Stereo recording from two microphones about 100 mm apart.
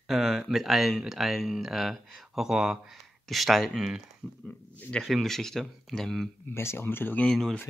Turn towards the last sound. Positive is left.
turn(degrees=20)  # may be behind; listen again after turning